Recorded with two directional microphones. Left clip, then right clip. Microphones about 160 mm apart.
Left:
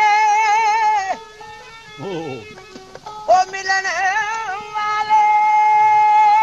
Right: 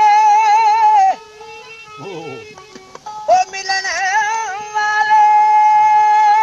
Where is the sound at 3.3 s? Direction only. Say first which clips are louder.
Right 1 dB; 15° right (ahead or behind).